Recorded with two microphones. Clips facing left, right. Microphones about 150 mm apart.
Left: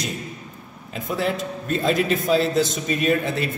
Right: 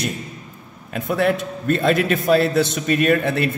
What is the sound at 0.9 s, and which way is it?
A man's voice, 60° right (ahead or behind).